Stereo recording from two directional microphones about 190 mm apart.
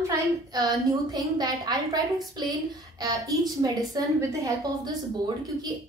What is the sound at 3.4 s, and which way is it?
A woman's voice, 20° right (ahead or behind).